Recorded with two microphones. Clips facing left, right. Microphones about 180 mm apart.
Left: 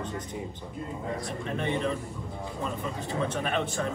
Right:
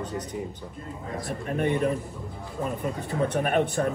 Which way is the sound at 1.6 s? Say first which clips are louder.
Right 5 dB; 50° right (ahead or behind).